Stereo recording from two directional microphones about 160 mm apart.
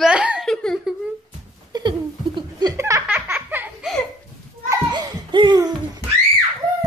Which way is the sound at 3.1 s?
10° right (ahead or behind).